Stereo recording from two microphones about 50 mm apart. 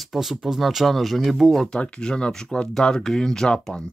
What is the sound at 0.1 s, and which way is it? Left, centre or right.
Speech, centre.